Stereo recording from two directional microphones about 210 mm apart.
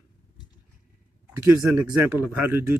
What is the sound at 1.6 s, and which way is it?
A man's voice, 10° right (ahead or behind).